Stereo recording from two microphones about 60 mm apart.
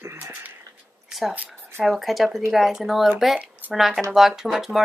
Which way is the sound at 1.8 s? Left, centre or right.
Centre.